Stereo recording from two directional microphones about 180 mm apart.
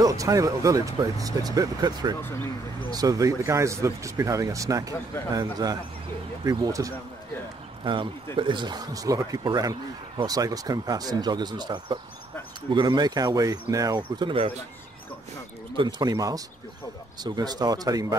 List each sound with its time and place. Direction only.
0.0 s speech: 20° right (ahead or behind)
15.7 s speech: 25° right (ahead or behind)